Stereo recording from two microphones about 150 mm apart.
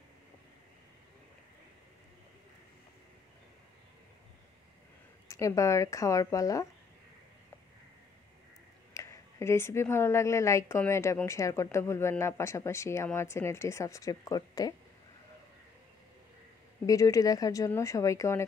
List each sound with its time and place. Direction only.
5.3 s speech: 20° left (ahead or behind)
8.9 s speech: 20° left (ahead or behind)
16.8 s speech: 25° left (ahead or behind)